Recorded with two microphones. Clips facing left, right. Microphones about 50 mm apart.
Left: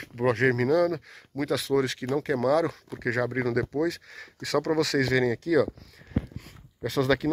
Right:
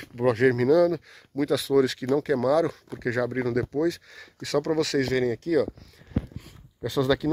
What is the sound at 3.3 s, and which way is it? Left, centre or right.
Speech, left.